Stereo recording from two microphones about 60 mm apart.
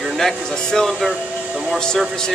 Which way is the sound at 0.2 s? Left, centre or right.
Centre.